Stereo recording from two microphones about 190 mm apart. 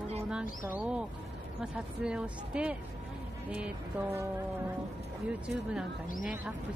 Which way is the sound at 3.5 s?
10° right (ahead or behind).